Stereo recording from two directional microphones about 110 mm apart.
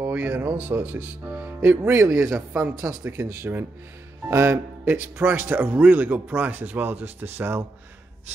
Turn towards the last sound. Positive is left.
turn(degrees=-20)  # may be behind; listen again after turning